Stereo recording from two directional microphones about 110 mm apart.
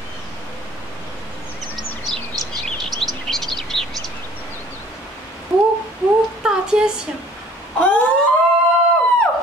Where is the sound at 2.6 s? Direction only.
Centre (ahead or behind).